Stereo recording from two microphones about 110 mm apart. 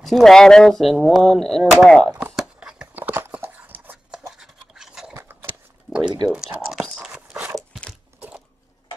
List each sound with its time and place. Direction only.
0.0 s speech: centre (ahead or behind)
2.1 s dog: 10° right (ahead or behind)
4.3 s toothbrush: 5° right (ahead or behind)
5.1 s scissors: 25° right (ahead or behind)
6.3 s speech: 5° right (ahead or behind)
7.0 s a sound: 5° right (ahead or behind)